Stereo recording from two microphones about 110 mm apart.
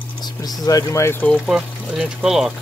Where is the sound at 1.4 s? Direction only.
5° right (ahead or behind).